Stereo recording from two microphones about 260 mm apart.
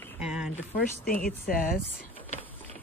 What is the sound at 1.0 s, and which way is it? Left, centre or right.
Speech, left.